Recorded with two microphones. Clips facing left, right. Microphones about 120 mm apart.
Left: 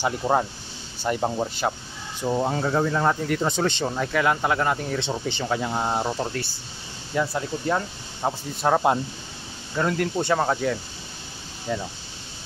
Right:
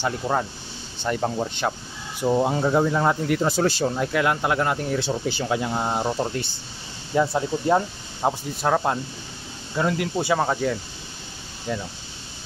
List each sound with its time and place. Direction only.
0.0 s speech: 15° left (ahead or behind)
2.2 s speech: 10° right (ahead or behind)
7.2 s speech: 20° right (ahead or behind)
8.5 s speech: 5° left (ahead or behind)